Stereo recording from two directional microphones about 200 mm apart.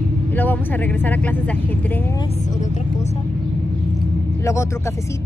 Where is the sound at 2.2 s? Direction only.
35° left (ahead or behind).